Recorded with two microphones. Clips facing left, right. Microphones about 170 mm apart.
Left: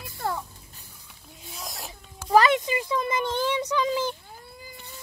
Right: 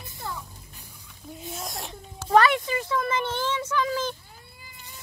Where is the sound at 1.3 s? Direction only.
Centre (ahead or behind).